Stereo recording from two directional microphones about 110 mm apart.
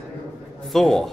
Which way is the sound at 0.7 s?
5° left (ahead or behind).